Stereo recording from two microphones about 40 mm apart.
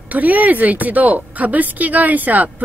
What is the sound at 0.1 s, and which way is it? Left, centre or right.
A woman's voice, right.